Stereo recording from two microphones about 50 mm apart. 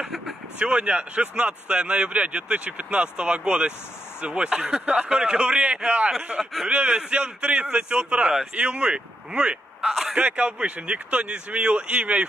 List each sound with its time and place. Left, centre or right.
0.6 s speech: right
6.4 s speech: centre
6.7 s speech: centre
9.8 s a sound: centre
10.1 s speech: right